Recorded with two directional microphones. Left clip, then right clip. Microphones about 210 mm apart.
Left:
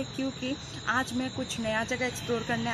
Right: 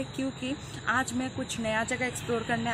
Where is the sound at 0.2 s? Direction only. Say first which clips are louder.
Left 1 dB; centre (ahead or behind).